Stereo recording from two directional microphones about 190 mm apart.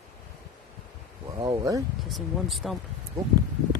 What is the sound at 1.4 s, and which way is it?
Speech, 20° right (ahead or behind).